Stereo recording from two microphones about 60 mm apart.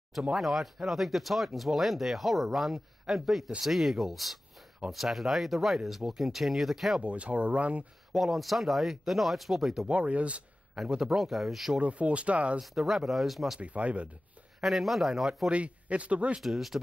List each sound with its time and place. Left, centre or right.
0.1 s speech: centre
7.0 s speech: right
8.1 s speech: centre
9.8 s speech: right
10.9 s speech: centre
11.8 s speech: right
12.5 s speech: centre
13.6 s speech: right
14.6 s speech: centre
15.5 s speech: right
16.3 s speech: centre